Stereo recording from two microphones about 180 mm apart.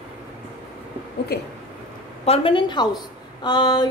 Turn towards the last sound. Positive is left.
turn(degrees=20)  # may be behind; listen again after turning